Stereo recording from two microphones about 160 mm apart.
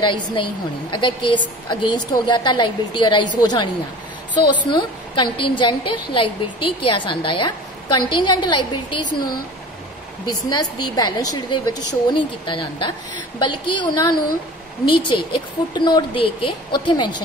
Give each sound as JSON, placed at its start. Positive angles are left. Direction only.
{"t": 0.0, "sound": "a woman's voice", "side_deg": 30}
{"t": 4.4, "sound": "a woman's voice", "side_deg": 30}